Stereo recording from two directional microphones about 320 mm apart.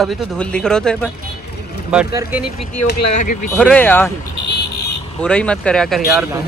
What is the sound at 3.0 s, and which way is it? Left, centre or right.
Speech, left.